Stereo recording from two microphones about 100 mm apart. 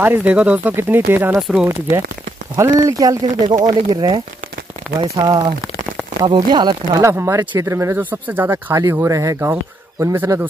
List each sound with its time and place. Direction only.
0.0 s speech: 15° right (ahead or behind)
2.5 s speech: 30° right (ahead or behind)
3.4 s speech: 50° right (ahead or behind)
5.0 s speech: 35° right (ahead or behind)
7.0 s speech: 30° right (ahead or behind)
8.0 s speech: 15° right (ahead or behind)